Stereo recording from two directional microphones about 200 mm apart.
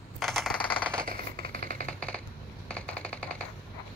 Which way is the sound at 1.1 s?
45° right (ahead or behind).